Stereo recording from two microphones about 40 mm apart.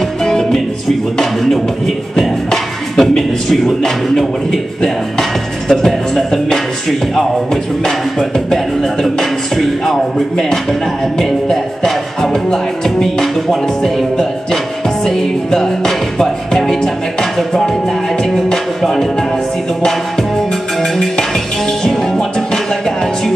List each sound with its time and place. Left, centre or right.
0.2 s music: centre
2.1 s speech: centre
5.7 s music: centre